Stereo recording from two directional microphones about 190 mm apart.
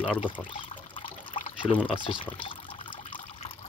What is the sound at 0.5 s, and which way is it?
Trickle, 25° left (ahead or behind).